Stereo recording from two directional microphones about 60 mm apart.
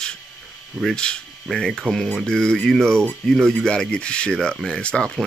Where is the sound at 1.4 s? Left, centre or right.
Centre.